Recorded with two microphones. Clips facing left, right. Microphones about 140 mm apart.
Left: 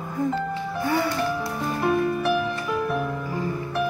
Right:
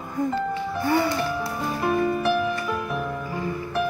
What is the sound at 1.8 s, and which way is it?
Music, centre (ahead or behind).